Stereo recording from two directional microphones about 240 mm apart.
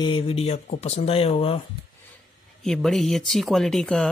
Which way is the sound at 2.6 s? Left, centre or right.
Centre.